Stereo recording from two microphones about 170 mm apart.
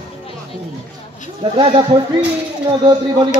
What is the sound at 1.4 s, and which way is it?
Speech, 30° right (ahead or behind).